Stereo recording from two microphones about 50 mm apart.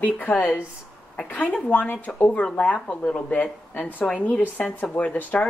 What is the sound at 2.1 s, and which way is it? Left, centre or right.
Speech, left.